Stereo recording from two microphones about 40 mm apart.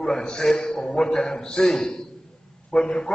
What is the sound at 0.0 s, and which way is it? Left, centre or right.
A man's voice, left.